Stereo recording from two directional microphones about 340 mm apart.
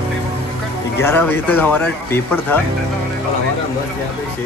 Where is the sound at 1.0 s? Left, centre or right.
Centre.